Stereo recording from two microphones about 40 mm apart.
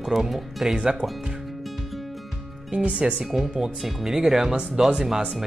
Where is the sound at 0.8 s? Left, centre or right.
Right.